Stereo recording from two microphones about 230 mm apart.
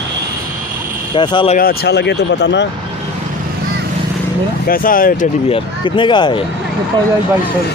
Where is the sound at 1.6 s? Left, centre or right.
Left.